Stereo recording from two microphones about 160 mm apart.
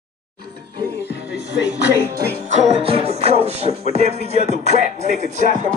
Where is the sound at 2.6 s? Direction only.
40° right (ahead or behind).